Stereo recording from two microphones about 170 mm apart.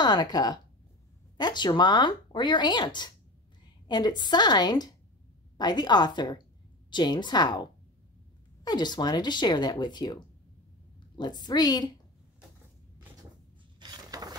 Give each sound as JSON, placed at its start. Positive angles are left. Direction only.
{"t": 0.0, "sound": "speech", "side_deg": 25}
{"t": 8.6, "sound": "speech", "side_deg": 25}
{"t": 11.1, "sound": "speech", "side_deg": 25}
{"t": 13.7, "sound": "mechanisms", "side_deg": -25}